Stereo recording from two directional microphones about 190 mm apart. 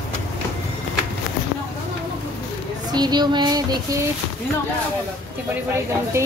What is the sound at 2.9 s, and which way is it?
Child singing, 20° right (ahead or behind).